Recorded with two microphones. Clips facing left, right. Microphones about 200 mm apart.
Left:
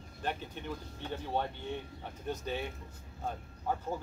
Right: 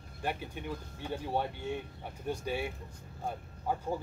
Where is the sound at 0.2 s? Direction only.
10° right (ahead or behind).